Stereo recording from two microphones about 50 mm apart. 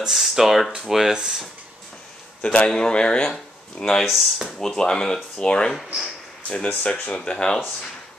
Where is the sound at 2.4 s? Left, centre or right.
Left.